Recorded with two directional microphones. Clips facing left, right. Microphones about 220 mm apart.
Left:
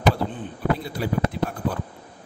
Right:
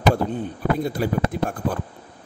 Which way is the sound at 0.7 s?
45° right (ahead or behind).